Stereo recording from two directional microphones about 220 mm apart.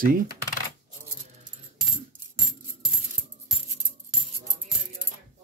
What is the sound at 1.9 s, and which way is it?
Coin, centre (ahead or behind).